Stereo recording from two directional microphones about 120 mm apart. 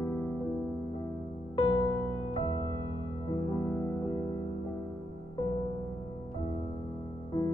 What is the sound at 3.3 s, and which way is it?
Music, 25° left (ahead or behind).